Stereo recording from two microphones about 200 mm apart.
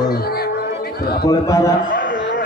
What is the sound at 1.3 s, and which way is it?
Speech, 15° left (ahead or behind).